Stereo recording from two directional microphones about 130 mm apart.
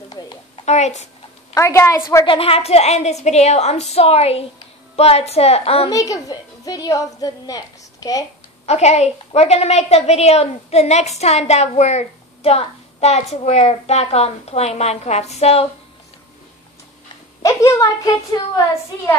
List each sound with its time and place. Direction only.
0.2 s a sound: 30° left (ahead or behind)
0.7 s a woman's voice: 60° left (ahead or behind)
1.5 s a woman's voice: 20° left (ahead or behind)
2.2 s a woman's voice: 45° left (ahead or behind)
5.9 s a woman's voice: 25° left (ahead or behind)
8.6 s a woman's voice: 60° left (ahead or behind)
17.4 s a woman's voice: 25° left (ahead or behind)